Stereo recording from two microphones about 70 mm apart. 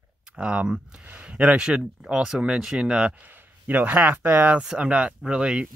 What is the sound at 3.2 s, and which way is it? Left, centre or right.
Speech, right.